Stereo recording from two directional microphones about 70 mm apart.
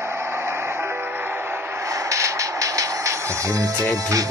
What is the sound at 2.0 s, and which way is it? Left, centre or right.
Music, right.